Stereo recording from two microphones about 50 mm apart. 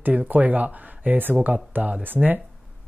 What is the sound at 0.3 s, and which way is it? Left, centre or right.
Speech, right.